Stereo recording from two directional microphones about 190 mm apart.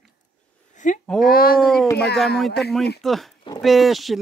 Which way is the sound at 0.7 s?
40° left (ahead or behind).